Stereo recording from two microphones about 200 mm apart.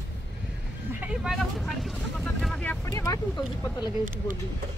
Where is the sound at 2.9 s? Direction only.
15° left (ahead or behind).